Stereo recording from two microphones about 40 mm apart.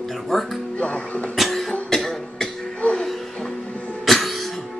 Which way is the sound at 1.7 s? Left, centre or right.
Centre.